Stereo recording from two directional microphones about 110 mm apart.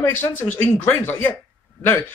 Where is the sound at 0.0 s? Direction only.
20° left (ahead or behind).